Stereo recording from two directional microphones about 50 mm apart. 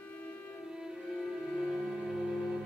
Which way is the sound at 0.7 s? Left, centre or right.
Centre.